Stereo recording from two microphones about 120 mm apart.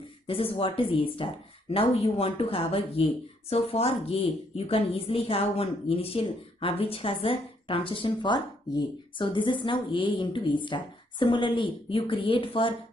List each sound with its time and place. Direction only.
0.3 s speech: 50° left (ahead or behind)